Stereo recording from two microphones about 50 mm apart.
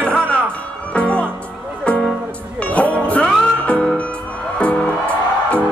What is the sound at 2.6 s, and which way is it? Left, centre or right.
Music, left.